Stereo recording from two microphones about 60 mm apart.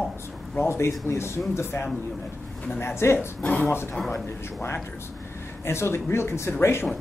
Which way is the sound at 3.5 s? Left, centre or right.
Left.